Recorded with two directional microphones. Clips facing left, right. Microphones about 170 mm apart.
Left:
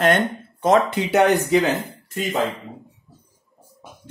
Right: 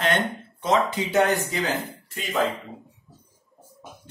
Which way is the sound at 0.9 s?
65° left (ahead or behind).